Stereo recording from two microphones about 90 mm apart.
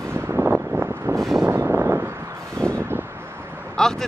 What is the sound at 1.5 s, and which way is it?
Vehicle, 25° right (ahead or behind).